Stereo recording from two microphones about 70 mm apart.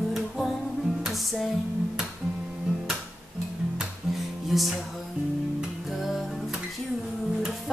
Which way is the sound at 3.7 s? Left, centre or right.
Centre.